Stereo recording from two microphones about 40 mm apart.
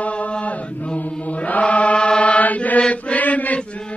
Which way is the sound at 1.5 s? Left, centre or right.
Left.